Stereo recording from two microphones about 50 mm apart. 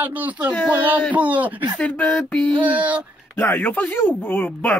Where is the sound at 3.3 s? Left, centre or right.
Left.